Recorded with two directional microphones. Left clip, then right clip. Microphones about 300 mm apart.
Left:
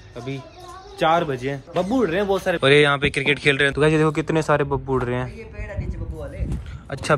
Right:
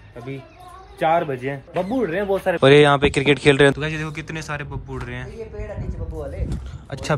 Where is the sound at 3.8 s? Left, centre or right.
Centre.